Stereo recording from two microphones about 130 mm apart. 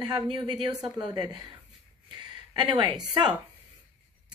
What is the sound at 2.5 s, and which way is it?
Speech, 35° right (ahead or behind).